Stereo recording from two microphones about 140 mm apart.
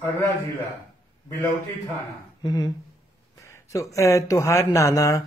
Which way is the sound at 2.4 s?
30° left (ahead or behind).